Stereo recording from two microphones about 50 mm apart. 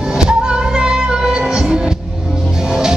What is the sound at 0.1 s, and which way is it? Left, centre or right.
Music, centre.